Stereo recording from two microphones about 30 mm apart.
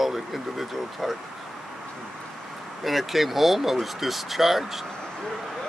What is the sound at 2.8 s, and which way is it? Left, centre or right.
Speech, centre.